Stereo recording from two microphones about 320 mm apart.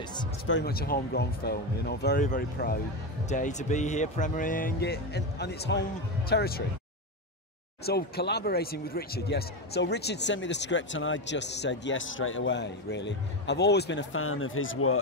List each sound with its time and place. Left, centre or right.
0.5 s speech: left
7.8 s speech: left